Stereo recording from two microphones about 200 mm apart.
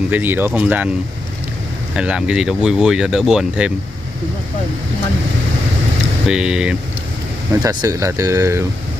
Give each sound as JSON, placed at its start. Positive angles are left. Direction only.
{"t": 0.1, "sound": "speech", "side_deg": -10}
{"t": 2.0, "sound": "speech", "side_deg": -5}
{"t": 6.2, "sound": "speech", "side_deg": -5}
{"t": 7.6, "sound": "speech", "side_deg": -15}